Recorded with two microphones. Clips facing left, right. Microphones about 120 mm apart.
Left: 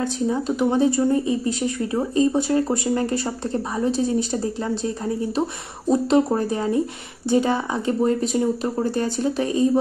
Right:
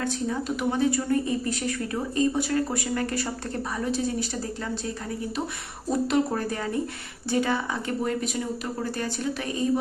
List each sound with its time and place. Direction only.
0.4 s speech: 30° left (ahead or behind)